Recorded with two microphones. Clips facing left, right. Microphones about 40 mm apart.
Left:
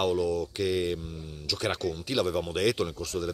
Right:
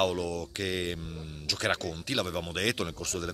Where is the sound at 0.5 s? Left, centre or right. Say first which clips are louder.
Left 5 dB; right.